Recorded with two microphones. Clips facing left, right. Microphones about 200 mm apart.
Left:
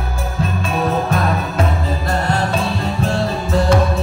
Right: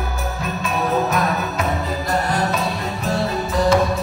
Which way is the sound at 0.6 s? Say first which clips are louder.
Even; 30° left (ahead or behind).